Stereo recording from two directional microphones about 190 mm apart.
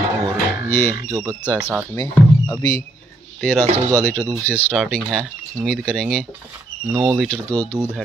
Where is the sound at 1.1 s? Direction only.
15° right (ahead or behind).